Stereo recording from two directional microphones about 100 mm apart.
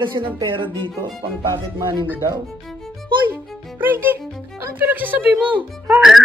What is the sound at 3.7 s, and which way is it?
Music, 20° right (ahead or behind).